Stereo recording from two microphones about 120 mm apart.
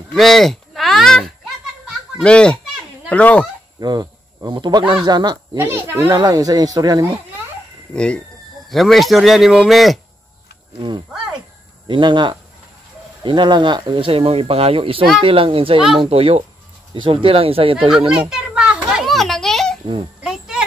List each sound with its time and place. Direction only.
0.1 s speech: centre (ahead or behind)
1.9 s a sound: 5° left (ahead or behind)
3.1 s speech: 10° left (ahead or behind)
3.8 s speech: 35° right (ahead or behind)
5.6 s speech: 20° right (ahead or behind)
6.0 s speech: 35° right (ahead or behind)
7.9 s speech: 5° left (ahead or behind)
10.8 s speech: 40° right (ahead or behind)
17.7 s children playing: 5° right (ahead or behind)
20.2 s a sound: 5° right (ahead or behind)